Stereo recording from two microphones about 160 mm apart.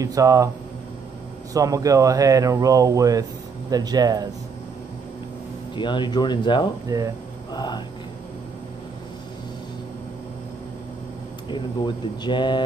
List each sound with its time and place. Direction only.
0.0 s speech: 20° right (ahead or behind)
1.5 s speech: 20° right (ahead or behind)
5.8 s speech: 30° left (ahead or behind)
6.9 s speech: 20° right (ahead or behind)
7.5 s speech: 25° left (ahead or behind)
11.4 s speech: 30° left (ahead or behind)